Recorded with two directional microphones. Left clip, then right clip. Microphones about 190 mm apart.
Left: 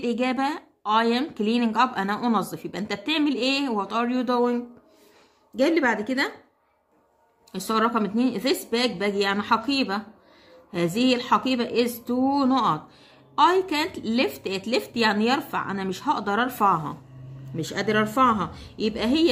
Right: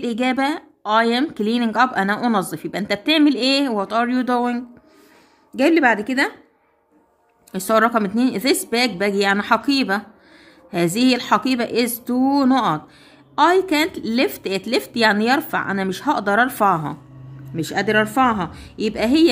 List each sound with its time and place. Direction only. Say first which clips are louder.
0.0 s a woman's voice: right 4 dB; 25° right (ahead or behind)
7.5 s a woman's voice: right 7 dB; 30° right (ahead or behind)